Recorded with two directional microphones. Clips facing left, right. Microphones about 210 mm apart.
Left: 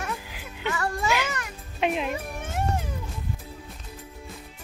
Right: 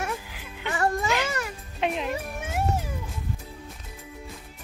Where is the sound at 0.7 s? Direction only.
30° right (ahead or behind).